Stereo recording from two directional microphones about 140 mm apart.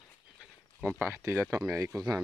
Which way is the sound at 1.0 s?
15° right (ahead or behind).